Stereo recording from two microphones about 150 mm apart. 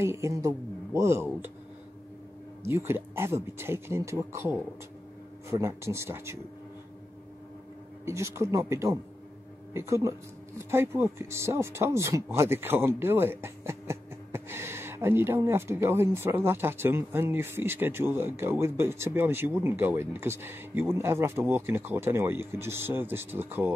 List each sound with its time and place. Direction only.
0.0 s speech: 20° right (ahead or behind)
2.6 s speech: 15° right (ahead or behind)
8.0 s speech: 20° right (ahead or behind)